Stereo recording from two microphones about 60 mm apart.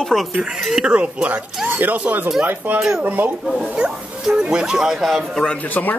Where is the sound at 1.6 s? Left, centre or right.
Right.